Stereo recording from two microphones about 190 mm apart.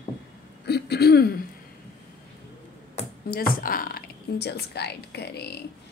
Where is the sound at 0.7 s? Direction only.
60° left (ahead or behind).